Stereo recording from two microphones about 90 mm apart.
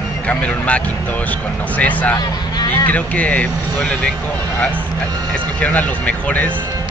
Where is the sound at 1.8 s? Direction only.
15° left (ahead or behind).